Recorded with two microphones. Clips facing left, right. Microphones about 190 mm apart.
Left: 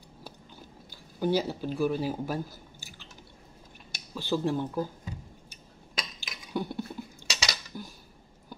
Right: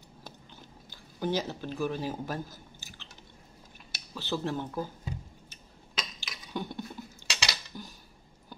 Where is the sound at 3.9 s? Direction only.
15° left (ahead or behind).